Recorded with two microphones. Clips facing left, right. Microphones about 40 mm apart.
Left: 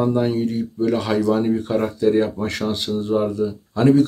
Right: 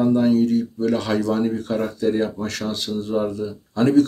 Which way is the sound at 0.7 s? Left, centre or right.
Centre.